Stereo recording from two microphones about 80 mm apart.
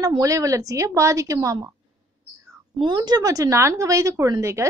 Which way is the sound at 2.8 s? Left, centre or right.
Right.